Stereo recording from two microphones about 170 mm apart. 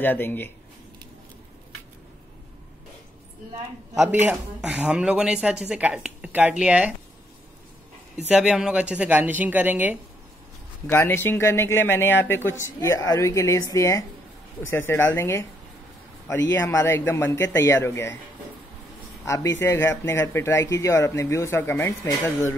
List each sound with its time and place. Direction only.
0.0 s speech: 10° left (ahead or behind)
4.1 s speech: 10° right (ahead or behind)
8.3 s speech: 5° right (ahead or behind)
10.9 s speech: 15° left (ahead or behind)
16.5 s speech: 15° left (ahead or behind)
19.2 s speech: 20° left (ahead or behind)